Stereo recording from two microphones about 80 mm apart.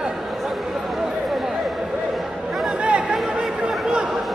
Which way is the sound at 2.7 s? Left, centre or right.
Centre.